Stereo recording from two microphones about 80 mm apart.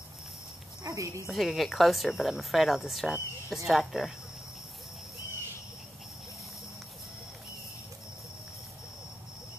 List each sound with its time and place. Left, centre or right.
0.8 s speech: right
1.3 s speech: centre